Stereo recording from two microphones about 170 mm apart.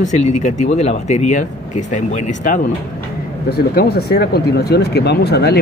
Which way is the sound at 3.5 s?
65° left (ahead or behind).